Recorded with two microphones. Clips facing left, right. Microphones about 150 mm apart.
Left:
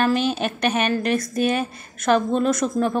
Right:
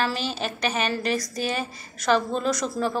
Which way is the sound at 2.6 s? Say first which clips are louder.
Left 4 dB; 15° left (ahead or behind).